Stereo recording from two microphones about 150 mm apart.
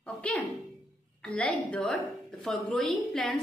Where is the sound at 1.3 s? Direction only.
10° left (ahead or behind).